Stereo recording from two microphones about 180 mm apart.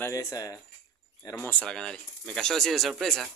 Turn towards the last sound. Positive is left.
turn(degrees=0)  # may be behind; listen again after turning